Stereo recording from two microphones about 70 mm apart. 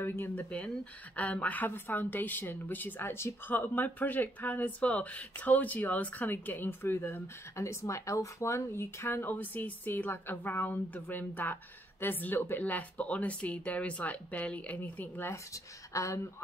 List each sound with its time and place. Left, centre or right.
0.0 s speech: left
1.1 s speech: left
15.3 s speech: left